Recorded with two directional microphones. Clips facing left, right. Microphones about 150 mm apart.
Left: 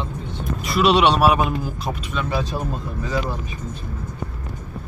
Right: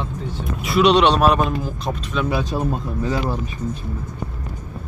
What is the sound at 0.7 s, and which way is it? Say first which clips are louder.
Speech: right 2 dB; 5° left (ahead or behind).